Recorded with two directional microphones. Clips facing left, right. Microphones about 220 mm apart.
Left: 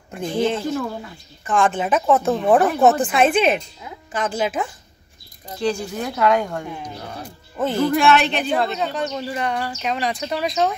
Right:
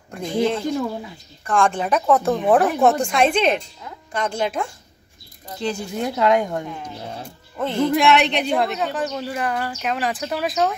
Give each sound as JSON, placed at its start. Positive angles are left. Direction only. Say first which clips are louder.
{"t": 0.1, "sound": "speech", "louder": "even", "side_deg": 5}
{"t": 5.6, "sound": "a woman's voice", "louder": "left 2 dB", "side_deg": -20}
{"t": 7.5, "sound": "speech", "louder": "left 1 dB", "side_deg": 5}
{"t": 7.9, "sound": "a woman's voice", "louder": "even", "side_deg": -20}
{"t": 8.7, "sound": "speech", "louder": "even", "side_deg": -5}